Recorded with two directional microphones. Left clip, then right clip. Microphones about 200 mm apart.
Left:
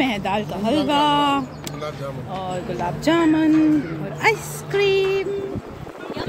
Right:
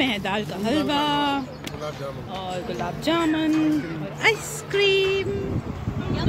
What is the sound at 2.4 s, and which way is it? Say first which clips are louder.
Speech: left 3 dB; 15° left (ahead or behind).